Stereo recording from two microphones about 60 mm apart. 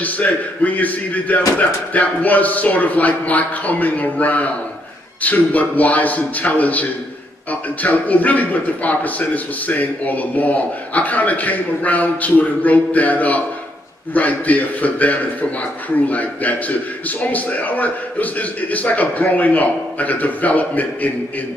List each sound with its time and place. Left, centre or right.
0.0 s a man's voice: left